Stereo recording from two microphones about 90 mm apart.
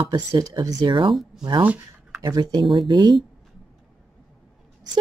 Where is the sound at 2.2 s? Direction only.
50° right (ahead or behind).